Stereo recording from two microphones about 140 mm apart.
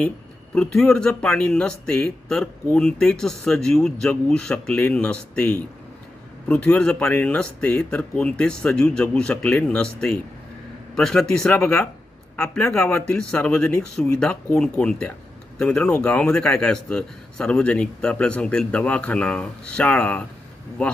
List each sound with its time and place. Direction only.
0.6 s speech: 5° left (ahead or behind)
13.0 s speech: 5° left (ahead or behind)